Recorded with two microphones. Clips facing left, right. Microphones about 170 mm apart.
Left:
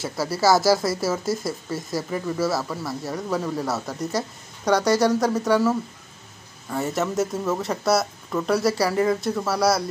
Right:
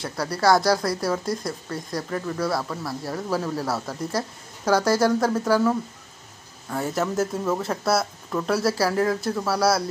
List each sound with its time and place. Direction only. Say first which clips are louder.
0.0 s speech: left 1 dB; 5° left (ahead or behind)